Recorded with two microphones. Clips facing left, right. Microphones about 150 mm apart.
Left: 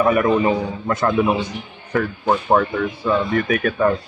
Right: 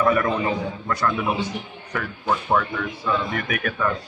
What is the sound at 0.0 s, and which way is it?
A man's voice, 20° left (ahead or behind).